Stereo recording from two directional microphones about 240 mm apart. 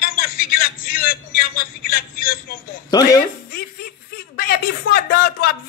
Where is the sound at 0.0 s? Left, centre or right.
Left.